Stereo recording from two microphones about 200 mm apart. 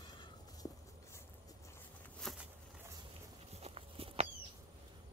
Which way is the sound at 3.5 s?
30° right (ahead or behind).